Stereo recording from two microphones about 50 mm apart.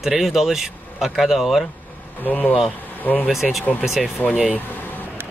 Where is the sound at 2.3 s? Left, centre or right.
Left.